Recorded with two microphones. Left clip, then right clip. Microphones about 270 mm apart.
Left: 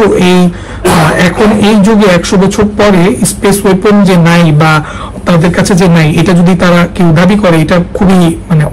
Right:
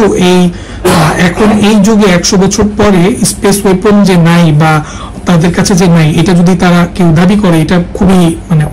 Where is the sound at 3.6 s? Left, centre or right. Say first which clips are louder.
Left 1 dB; centre.